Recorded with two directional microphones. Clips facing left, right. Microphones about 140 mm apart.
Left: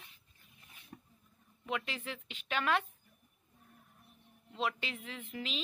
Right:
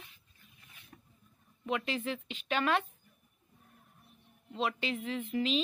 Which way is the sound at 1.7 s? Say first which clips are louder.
Right 5 dB; centre (ahead or behind).